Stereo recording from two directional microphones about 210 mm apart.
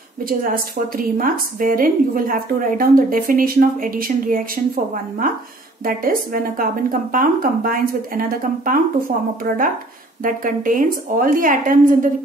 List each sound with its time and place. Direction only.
0.2 s a woman's voice: 40° right (ahead or behind)
5.9 s a woman's voice: 40° right (ahead or behind)